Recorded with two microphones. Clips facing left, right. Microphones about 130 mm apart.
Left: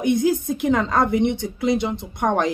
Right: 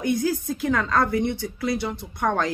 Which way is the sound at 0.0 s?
20° left (ahead or behind).